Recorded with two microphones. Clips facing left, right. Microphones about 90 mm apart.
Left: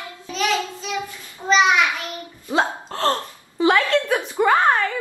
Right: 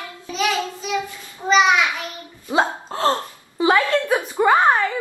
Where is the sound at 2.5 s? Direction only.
10° right (ahead or behind).